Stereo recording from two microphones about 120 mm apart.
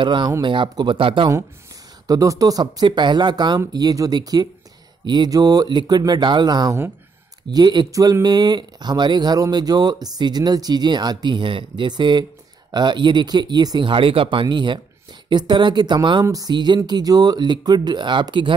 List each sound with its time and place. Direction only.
0.0 s speech: 40° right (ahead or behind)
2.0 s speech: 30° right (ahead or behind)